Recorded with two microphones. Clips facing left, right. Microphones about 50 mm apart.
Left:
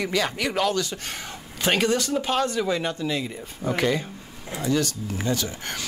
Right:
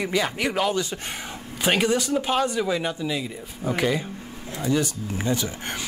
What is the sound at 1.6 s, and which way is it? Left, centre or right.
Speech, centre.